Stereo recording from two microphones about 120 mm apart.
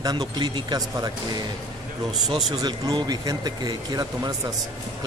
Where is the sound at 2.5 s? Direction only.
35° right (ahead or behind).